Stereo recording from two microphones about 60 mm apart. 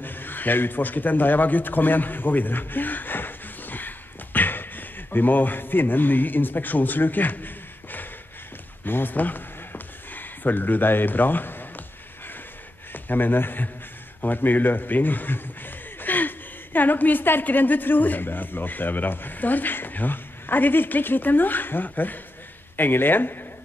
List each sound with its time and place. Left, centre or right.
0.0 s a man's voice: left
8.8 s a sound: left
12.9 s a man's voice: left